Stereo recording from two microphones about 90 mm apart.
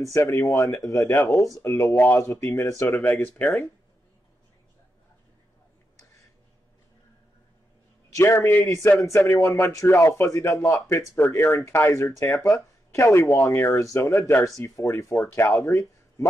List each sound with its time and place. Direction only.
0.0 s speech: 30° left (ahead or behind)
8.1 s speech: 30° left (ahead or behind)